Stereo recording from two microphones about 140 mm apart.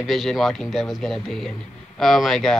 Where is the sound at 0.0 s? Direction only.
Centre (ahead or behind).